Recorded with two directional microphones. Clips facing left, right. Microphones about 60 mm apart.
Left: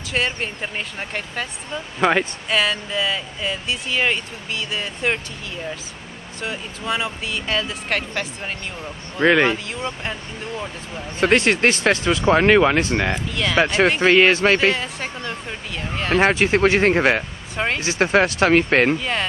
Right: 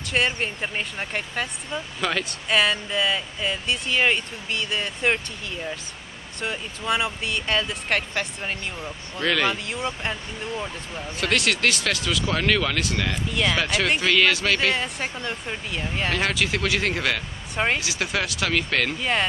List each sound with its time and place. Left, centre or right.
0.1 s speech: centre
2.0 s speech: left
2.5 s speech: centre
6.4 s speech: centre
9.2 s speech: left
9.7 s speech: centre
11.1 s speech: left
13.3 s speech: centre
13.6 s speech: left
14.7 s speech: centre
16.2 s speech: left
18.9 s speech: centre